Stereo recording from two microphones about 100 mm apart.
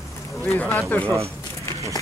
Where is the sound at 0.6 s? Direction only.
20° left (ahead or behind).